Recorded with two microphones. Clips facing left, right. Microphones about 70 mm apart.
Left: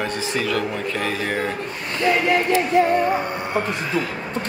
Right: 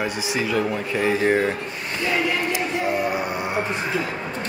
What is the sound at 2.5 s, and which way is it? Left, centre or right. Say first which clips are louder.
Music: left 6 dB; centre.